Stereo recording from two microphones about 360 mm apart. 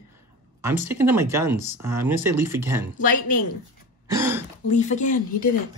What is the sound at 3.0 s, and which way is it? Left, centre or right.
Speech, left.